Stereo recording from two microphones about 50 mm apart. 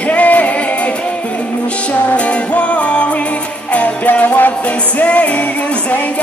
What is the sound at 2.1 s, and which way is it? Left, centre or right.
Music, left.